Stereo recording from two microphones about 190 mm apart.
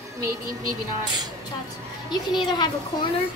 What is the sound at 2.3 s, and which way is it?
Speech, 25° left (ahead or behind).